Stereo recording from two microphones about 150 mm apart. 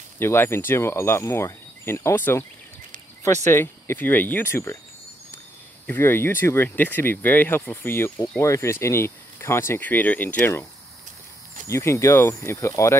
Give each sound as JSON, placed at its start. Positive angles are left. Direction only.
{"t": 0.2, "sound": "speech", "side_deg": 15}
{"t": 3.4, "sound": "speech", "side_deg": 15}
{"t": 5.9, "sound": "speech", "side_deg": 15}